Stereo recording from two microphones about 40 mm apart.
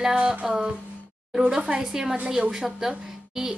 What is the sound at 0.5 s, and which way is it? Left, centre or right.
Speech, right.